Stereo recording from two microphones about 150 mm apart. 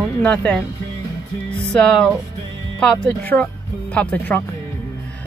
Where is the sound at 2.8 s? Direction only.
5° left (ahead or behind).